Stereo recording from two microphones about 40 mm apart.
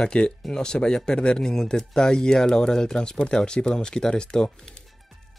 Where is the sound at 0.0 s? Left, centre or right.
Left.